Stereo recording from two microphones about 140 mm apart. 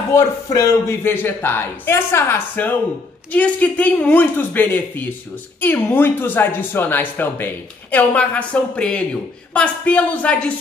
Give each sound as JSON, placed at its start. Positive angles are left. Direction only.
{"t": 0.1, "sound": "speech", "side_deg": 20}